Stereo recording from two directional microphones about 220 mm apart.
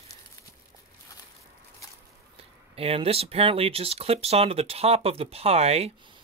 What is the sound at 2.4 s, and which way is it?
Speech, 25° right (ahead or behind).